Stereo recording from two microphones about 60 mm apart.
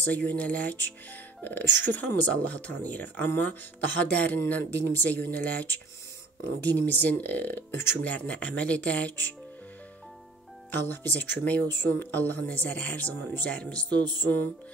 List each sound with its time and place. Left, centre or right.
0.0 s speech: left
8.0 s speech: left
10.7 s speech: left
14.2 s music: left